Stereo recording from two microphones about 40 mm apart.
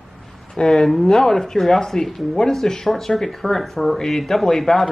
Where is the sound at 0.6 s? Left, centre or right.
Centre.